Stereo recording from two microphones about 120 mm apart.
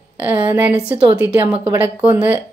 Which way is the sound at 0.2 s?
15° right (ahead or behind).